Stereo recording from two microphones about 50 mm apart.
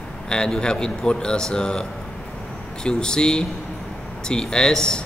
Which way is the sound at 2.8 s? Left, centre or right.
Centre.